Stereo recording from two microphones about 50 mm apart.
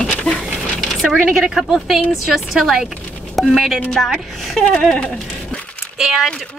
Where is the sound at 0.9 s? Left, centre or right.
Centre.